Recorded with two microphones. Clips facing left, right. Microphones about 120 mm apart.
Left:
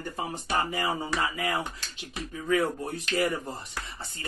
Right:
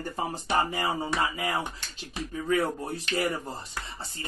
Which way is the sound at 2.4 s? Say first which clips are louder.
Left 1 dB; 35° right (ahead or behind).